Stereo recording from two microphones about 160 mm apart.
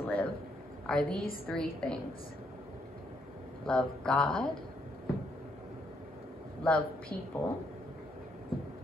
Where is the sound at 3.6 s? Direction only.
5° left (ahead or behind).